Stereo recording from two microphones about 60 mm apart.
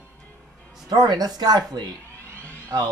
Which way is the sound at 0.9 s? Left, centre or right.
Right.